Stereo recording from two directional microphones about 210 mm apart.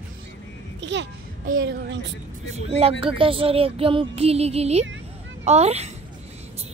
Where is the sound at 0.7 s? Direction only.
55° right (ahead or behind).